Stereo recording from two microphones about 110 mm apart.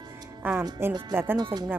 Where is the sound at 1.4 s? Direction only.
40° right (ahead or behind).